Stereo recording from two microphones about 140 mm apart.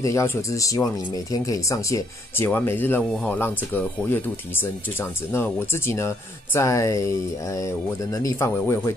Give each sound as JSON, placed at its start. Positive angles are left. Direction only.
{"t": 0.0, "sound": "speech", "side_deg": 20}